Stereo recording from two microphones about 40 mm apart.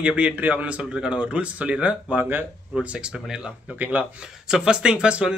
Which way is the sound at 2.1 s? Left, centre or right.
Right.